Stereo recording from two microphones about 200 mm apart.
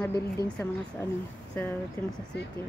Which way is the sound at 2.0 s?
10° left (ahead or behind).